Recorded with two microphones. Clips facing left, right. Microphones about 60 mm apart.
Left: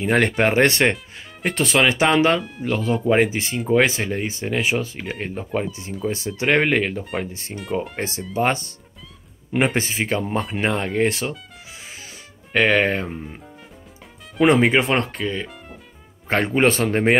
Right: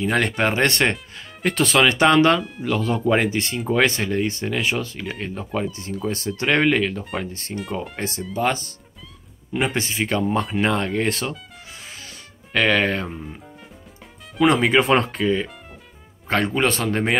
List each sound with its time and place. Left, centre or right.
0.0 s speech: left
0.7 s speech: centre
1.5 s speech: centre
7.0 s speech: centre
9.8 s a man's voice: left
10.0 s a man's voice: centre
10.4 s speech: centre
11.8 s music: centre
14.4 s a man's voice: left
14.8 s speech: centre
16.3 s a man's voice: left